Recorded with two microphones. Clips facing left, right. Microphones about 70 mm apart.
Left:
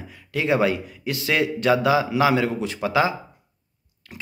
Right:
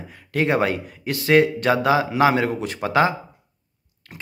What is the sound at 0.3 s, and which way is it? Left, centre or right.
A man's voice, right.